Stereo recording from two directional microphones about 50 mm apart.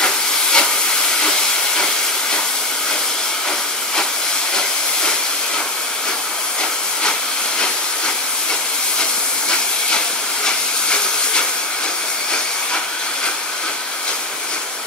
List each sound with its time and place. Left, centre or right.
0.0 s steam: centre
10.4 s steam: centre